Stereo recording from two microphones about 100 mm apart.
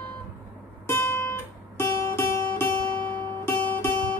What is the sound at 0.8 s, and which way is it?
Music, 25° left (ahead or behind).